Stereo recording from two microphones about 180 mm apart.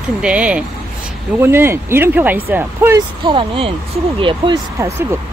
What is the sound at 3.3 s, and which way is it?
Speech, 30° right (ahead or behind).